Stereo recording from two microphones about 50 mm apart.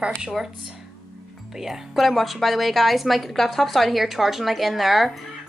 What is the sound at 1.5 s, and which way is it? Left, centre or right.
A woman's voice, centre.